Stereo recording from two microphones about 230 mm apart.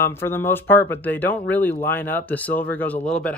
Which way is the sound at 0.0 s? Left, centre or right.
Centre.